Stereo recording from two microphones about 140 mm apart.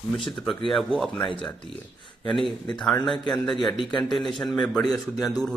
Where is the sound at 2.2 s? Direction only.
Centre (ahead or behind).